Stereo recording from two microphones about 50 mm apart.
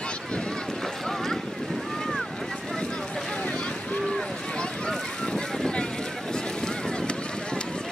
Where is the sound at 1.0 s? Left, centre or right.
Centre.